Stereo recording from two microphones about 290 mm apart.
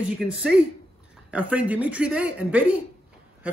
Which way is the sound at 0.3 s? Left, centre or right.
Centre.